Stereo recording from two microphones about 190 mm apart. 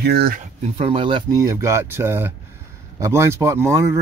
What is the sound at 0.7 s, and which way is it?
Speech, 25° right (ahead or behind).